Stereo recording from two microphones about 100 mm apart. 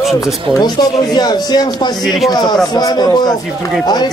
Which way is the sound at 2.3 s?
45° left (ahead or behind).